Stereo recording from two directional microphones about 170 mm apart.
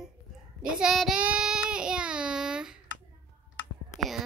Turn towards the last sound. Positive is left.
turn(degrees=0)  # may be behind; listen again after turning